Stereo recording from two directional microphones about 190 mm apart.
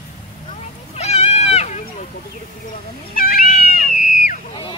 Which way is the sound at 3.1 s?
50° left (ahead or behind).